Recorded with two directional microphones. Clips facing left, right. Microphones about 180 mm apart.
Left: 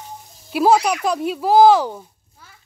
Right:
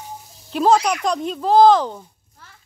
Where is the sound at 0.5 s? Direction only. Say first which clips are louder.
Left 1 dB; 10° left (ahead or behind).